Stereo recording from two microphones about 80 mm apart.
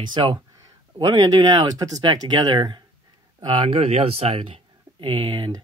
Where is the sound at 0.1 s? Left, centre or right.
Right.